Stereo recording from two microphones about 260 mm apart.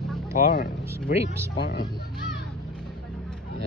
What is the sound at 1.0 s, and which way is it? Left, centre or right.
Speech, left.